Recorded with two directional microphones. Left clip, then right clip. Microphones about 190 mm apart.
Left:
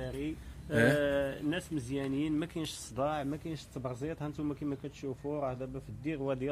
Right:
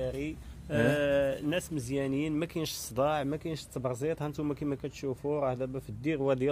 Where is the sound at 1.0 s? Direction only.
60° right (ahead or behind).